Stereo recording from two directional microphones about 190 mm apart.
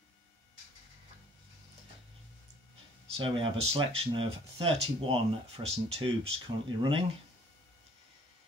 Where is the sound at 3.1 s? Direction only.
25° right (ahead or behind).